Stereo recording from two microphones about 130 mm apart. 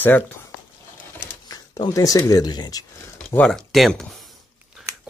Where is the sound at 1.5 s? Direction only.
30° left (ahead or behind).